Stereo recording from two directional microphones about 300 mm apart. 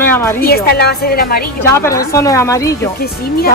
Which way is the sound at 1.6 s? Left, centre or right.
Centre.